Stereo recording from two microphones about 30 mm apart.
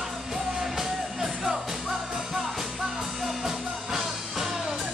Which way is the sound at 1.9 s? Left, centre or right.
Centre.